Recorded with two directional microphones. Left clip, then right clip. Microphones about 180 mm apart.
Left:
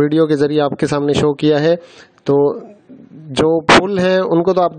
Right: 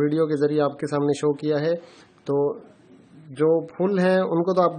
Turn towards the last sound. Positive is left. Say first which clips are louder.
# left 7 dB
turn(degrees=50)  # may be behind; listen again after turning